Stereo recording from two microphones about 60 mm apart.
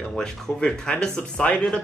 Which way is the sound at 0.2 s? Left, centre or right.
Centre.